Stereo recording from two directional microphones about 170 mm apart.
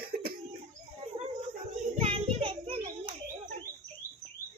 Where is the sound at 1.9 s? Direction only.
35° right (ahead or behind).